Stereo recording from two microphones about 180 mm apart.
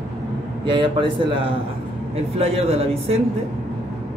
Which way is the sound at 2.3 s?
35° right (ahead or behind).